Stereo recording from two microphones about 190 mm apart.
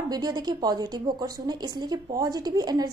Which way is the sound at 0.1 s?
20° right (ahead or behind).